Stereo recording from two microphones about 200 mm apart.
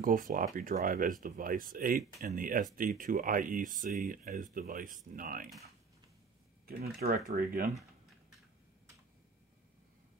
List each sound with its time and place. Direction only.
0.0 s speech: 40° right (ahead or behind)
6.6 s speech: 50° right (ahead or behind)